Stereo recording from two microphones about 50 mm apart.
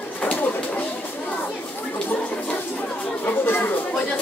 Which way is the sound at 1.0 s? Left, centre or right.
Left.